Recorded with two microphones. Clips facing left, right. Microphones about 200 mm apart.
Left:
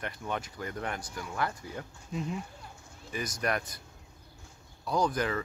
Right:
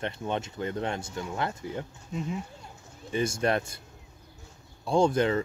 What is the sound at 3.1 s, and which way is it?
Speech, 25° right (ahead or behind).